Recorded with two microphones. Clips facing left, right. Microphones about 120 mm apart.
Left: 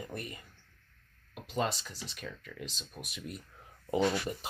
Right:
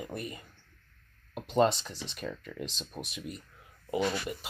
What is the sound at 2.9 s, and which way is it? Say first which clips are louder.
Speech: right 6 dB; 25° right (ahead or behind).